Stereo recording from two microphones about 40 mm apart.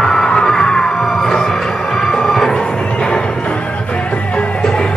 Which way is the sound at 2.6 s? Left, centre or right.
Left.